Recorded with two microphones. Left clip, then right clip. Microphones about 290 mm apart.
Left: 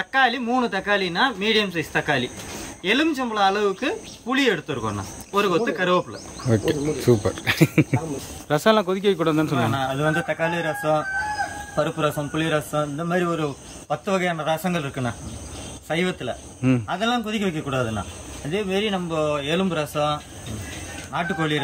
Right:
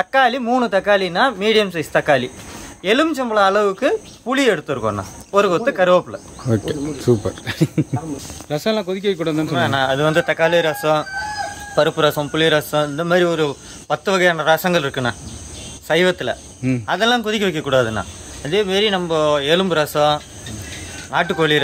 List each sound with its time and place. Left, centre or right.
0.0 s speech: centre
6.5 s speech: centre
9.6 s speech: centre